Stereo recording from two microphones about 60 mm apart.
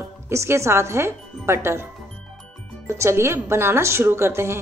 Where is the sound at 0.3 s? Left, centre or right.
Right.